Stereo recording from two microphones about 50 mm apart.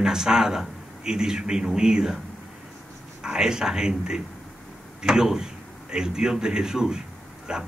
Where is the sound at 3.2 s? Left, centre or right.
Centre.